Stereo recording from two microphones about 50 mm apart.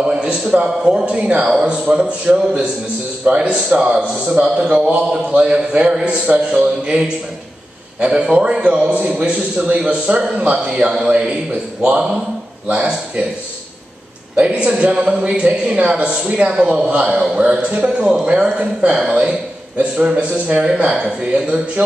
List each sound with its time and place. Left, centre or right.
0.0 s speech: centre
8.0 s speech: centre
8.9 s speech: right
14.3 s speech: right